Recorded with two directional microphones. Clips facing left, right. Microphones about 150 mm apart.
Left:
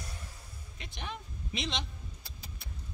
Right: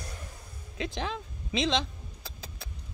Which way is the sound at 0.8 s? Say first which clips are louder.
Right 9 dB; 90° right.